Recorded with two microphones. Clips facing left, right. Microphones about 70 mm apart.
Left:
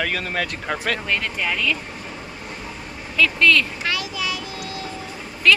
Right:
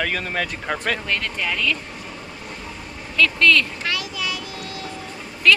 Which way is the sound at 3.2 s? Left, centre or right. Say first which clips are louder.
Even; centre.